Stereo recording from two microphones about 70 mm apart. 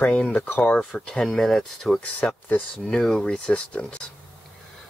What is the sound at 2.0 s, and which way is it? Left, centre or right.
Speech, centre.